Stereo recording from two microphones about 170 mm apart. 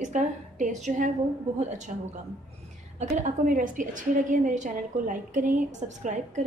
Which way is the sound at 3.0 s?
45° right (ahead or behind).